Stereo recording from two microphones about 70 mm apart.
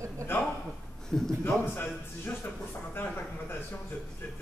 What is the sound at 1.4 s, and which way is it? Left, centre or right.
A man's voice, left.